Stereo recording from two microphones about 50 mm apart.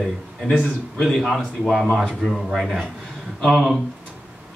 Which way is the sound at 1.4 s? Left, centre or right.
Centre.